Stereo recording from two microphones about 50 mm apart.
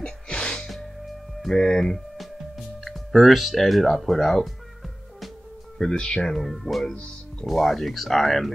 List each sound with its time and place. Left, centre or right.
0.0 s music: centre
1.6 s speech: centre
2.8 s speech: centre
5.8 s speech: centre
6.3 s speech: centre